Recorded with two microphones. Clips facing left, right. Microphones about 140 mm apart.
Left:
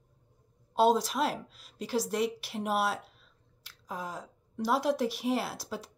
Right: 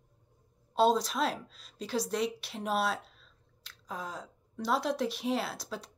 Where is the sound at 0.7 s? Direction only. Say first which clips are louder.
Left 1 dB; 10° left (ahead or behind).